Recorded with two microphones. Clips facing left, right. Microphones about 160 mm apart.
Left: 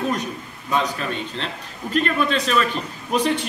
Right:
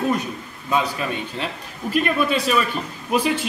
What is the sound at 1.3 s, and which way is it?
Speech, 10° right (ahead or behind).